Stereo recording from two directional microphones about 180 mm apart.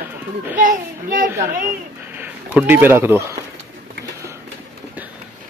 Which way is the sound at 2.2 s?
10° right (ahead or behind).